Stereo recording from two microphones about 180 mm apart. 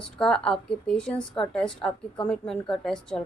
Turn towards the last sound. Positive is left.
turn(degrees=5)  # may be behind; listen again after turning